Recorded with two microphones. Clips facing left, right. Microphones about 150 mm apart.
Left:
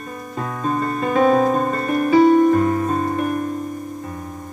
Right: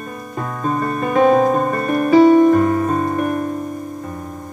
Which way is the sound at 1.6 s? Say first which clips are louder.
Right 2 dB; 15° right (ahead or behind).